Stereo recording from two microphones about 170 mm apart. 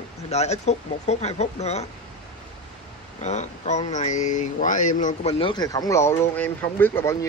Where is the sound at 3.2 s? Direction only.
40° left (ahead or behind).